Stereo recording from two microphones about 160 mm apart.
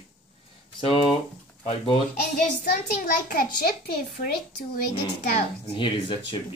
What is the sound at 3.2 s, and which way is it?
Speech, 65° left (ahead or behind).